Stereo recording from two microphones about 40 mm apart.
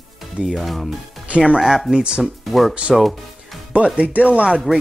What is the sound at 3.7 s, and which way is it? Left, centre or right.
Speech, right.